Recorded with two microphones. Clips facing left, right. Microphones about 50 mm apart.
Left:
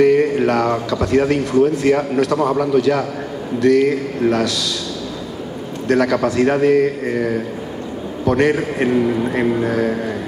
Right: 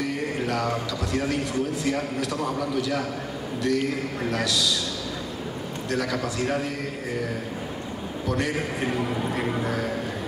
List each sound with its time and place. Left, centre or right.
0.0 s a man's voice: left
5.9 s a man's voice: left
8.3 s a man's voice: left